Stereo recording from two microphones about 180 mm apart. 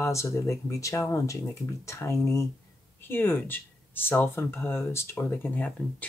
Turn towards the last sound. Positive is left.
turn(degrees=10)  # may be behind; listen again after turning